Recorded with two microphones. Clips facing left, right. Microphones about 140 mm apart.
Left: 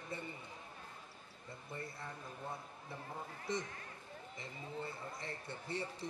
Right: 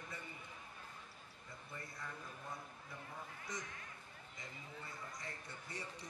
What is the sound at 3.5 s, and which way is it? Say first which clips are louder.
A man's voice: left 10 dB; 25° left (ahead or behind).